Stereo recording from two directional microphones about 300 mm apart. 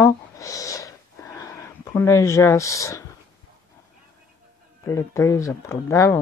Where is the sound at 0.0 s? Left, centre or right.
Centre.